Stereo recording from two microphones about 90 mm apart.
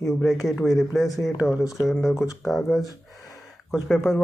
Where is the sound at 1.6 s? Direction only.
35° left (ahead or behind).